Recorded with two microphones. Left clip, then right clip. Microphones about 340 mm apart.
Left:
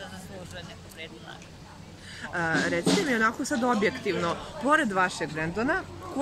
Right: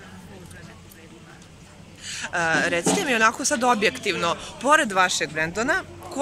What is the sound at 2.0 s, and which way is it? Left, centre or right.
Speech, centre.